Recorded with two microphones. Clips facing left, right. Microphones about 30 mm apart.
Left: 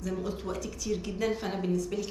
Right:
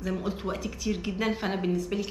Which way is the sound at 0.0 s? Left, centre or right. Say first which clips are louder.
Right 3 dB; right.